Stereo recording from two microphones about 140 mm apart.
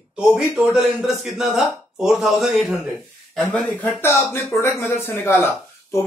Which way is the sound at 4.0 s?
15° left (ahead or behind).